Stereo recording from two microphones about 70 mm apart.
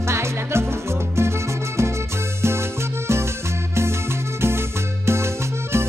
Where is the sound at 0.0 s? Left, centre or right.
Right.